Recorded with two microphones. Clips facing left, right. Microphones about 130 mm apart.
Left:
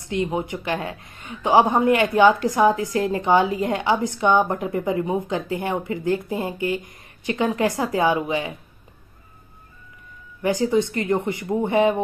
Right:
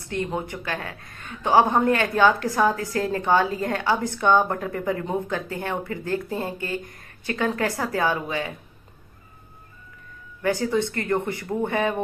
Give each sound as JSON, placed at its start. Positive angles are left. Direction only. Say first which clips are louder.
{"t": 0.0, "sound": "a woman's voice", "louder": "left 3 dB", "side_deg": 15}
{"t": 10.4, "sound": "a woman's voice", "louder": "left 3 dB", "side_deg": 15}